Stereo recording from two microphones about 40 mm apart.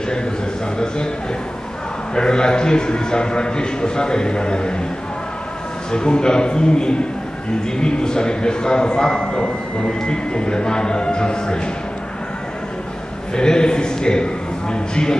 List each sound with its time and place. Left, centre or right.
2.1 s a man's voice: centre
5.9 s a man's voice: left
13.3 s a man's voice: left